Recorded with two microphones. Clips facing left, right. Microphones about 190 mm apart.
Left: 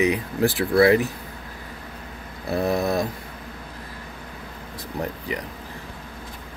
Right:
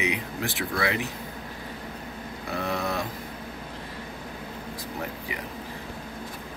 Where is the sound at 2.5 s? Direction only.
35° left (ahead or behind).